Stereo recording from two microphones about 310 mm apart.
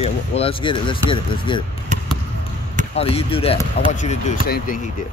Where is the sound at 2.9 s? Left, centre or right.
Centre.